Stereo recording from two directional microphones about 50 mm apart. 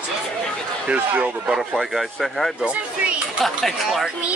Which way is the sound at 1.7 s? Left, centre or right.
Centre.